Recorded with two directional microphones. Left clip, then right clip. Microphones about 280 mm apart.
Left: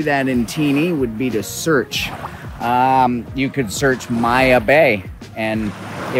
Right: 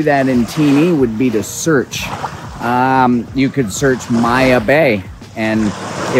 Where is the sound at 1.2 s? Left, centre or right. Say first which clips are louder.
Right 5 dB; centre.